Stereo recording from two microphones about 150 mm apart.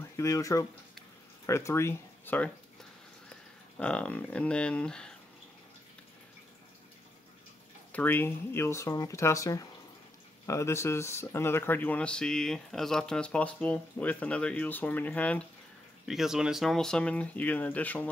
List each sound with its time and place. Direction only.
0.0 s speech: 20° left (ahead or behind)
7.9 s speech: 15° left (ahead or behind)
16.1 s speech: 5° right (ahead or behind)